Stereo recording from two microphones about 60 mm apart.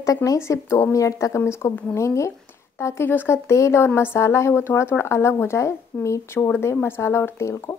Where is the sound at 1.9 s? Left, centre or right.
Left.